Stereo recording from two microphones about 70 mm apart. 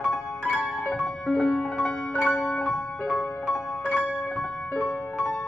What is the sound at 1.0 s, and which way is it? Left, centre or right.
Music, centre.